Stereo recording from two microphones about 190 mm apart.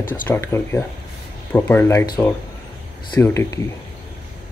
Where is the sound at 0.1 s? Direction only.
15° left (ahead or behind).